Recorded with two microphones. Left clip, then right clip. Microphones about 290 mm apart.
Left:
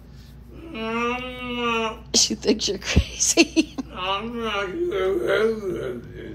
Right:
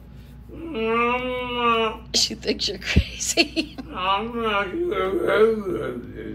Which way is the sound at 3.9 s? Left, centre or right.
Centre.